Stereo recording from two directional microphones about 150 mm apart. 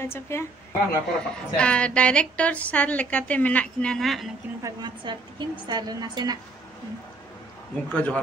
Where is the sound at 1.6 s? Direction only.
5° left (ahead or behind).